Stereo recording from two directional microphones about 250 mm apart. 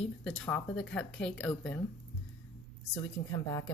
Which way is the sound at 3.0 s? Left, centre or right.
Centre.